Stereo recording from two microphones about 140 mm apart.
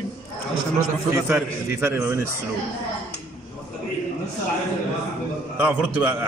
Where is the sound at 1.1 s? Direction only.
20° right (ahead or behind).